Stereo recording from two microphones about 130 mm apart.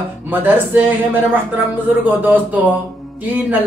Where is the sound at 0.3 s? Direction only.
15° right (ahead or behind).